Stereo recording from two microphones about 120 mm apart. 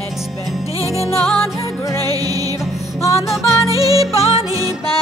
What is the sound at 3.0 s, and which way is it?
Music, 25° left (ahead or behind).